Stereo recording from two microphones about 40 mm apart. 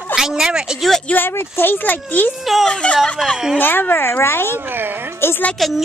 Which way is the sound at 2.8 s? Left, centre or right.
Left.